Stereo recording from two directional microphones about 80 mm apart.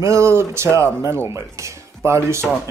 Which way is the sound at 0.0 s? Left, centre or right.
Right.